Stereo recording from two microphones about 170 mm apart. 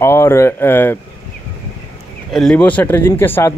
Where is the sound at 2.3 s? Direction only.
Centre (ahead or behind).